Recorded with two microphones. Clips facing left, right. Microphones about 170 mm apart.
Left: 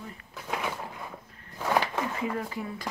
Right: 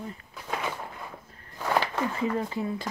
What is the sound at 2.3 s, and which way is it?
Speech, 25° right (ahead or behind).